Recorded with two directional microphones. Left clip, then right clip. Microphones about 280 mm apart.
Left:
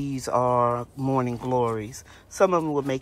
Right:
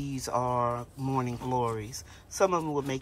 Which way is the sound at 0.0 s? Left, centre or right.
Centre.